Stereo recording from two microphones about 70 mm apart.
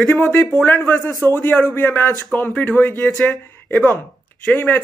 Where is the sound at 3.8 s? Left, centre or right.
Left.